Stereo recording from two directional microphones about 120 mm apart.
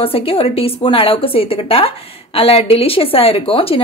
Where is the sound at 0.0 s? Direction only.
50° left (ahead or behind).